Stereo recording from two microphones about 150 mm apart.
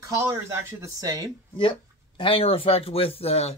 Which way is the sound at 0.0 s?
20° right (ahead or behind).